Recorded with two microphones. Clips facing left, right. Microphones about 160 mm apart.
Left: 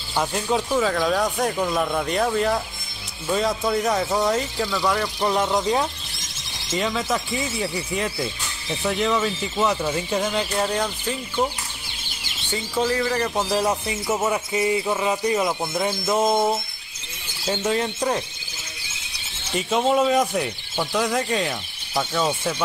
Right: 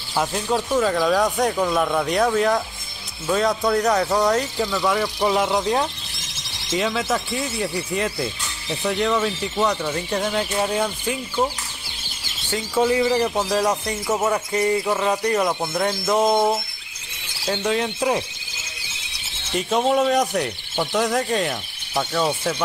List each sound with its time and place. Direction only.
0.1 s speech: centre (ahead or behind)
12.4 s speech: 5° right (ahead or behind)
13.4 s a sound: 10° left (ahead or behind)
15.0 s speech: 5° left (ahead or behind)
17.6 s speech: centre (ahead or behind)
19.5 s speech: centre (ahead or behind)